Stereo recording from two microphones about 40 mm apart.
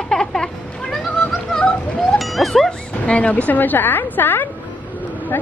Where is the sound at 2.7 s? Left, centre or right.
Left.